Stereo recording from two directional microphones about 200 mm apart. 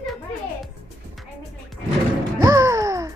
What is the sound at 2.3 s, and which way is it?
Music, 15° right (ahead or behind).